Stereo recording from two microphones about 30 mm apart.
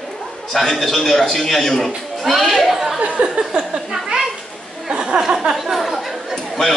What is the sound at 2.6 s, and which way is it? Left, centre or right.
Speech, centre.